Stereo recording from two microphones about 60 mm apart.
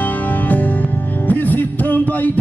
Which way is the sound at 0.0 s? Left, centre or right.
Left.